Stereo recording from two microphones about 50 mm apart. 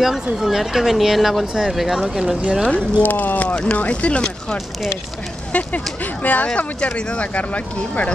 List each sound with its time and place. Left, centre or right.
0.0 s speech: centre
2.7 s speech: left
3.4 s speech: centre